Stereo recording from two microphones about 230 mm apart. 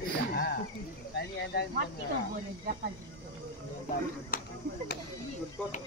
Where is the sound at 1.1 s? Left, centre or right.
Left.